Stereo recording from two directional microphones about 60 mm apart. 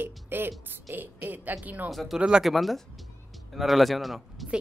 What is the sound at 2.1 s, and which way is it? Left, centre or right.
Speech, centre.